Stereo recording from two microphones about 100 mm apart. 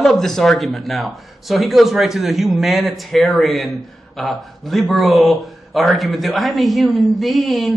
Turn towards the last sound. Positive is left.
turn(degrees=0)  # may be behind; listen again after turning